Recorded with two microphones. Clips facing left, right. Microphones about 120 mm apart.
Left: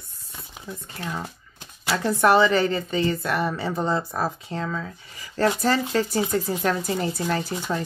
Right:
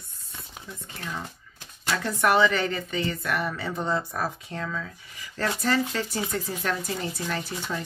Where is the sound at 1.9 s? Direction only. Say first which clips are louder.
Left 4 dB; 30° left (ahead or behind).